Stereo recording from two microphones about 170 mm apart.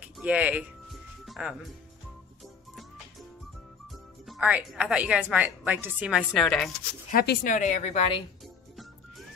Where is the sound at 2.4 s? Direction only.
Centre (ahead or behind).